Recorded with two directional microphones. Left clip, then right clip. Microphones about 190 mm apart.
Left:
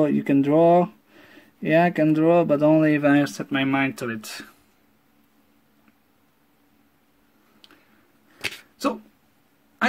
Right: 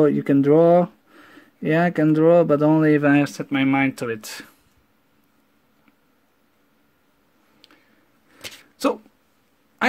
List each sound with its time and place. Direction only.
0.0 s speech: 35° right (ahead or behind)